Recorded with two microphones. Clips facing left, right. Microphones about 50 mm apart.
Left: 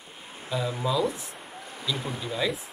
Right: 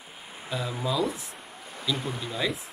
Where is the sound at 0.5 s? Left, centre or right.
Centre.